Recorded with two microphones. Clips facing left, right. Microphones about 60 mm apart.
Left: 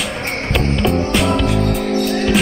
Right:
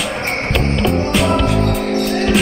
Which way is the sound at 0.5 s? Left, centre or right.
Centre.